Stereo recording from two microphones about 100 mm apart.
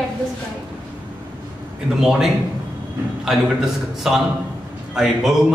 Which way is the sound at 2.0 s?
5° right (ahead or behind).